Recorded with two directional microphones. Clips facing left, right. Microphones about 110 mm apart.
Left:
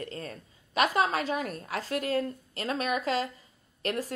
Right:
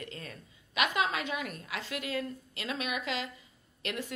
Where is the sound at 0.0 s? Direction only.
35° left (ahead or behind).